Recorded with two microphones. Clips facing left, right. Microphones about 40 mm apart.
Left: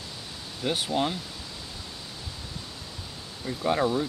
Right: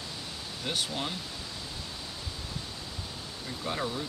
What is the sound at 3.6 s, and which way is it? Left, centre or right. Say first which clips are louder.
Speech: left 9 dB; centre.